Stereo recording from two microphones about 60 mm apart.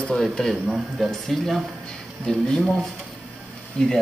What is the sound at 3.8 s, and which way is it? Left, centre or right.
Speech, centre.